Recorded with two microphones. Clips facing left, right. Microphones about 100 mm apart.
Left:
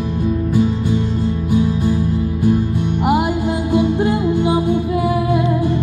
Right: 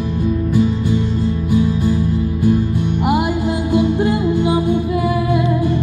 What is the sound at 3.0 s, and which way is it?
Music, 30° left (ahead or behind).